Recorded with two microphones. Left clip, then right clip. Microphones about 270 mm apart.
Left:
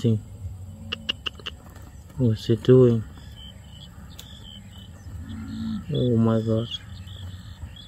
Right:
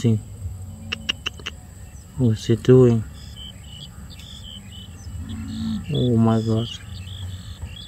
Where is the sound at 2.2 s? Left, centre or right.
Centre.